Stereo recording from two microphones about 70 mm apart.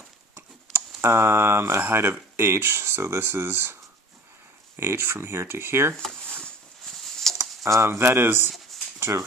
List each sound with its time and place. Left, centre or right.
0.7 s speech: right
4.7 s speech: right
7.3 s a sound: centre
7.6 s speech: right